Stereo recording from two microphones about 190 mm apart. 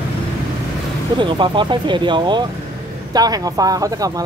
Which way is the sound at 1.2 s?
25° right (ahead or behind).